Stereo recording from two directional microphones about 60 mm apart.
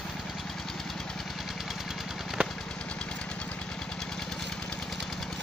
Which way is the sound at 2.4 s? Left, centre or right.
Right.